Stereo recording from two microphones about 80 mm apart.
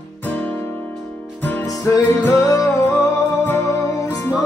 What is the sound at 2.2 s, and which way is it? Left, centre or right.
Music, left.